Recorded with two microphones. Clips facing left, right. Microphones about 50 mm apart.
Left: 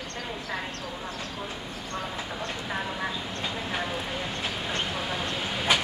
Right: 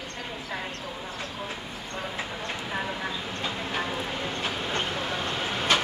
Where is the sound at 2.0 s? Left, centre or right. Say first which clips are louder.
Even; centre.